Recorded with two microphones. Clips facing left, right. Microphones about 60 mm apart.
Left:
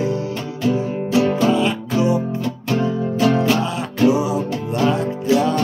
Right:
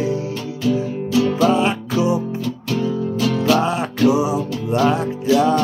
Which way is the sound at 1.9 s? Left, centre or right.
Left.